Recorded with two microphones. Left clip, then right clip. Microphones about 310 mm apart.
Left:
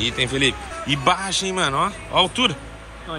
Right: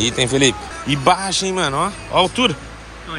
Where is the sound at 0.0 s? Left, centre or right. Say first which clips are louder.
Right 4 dB; centre.